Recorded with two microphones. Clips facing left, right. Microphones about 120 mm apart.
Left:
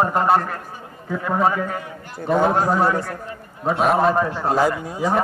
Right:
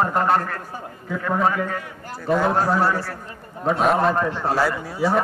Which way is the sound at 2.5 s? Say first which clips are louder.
Left 1 dB; 20° left (ahead or behind).